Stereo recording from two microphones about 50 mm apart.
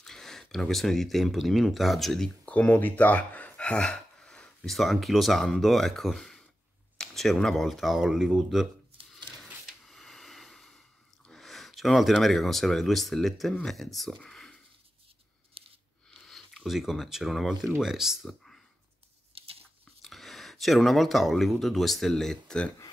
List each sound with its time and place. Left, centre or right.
0.0 s speech: centre
2.4 s speech: left
3.8 s speech: centre
7.0 s a sound: centre
7.5 s speech: centre
9.1 s a sound: centre
11.3 s speech: centre
16.3 s speech: centre
20.0 s speech: centre